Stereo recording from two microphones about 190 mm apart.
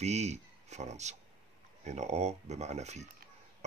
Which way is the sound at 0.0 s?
35° right (ahead or behind).